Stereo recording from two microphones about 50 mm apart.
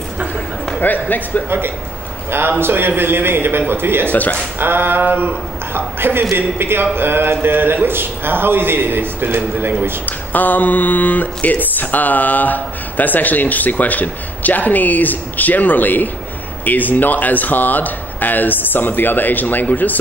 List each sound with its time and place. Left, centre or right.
0.7 s speech: left
2.6 s a man's voice: right
4.1 s speech: left
4.6 s a man's voice: right
10.0 s speech: left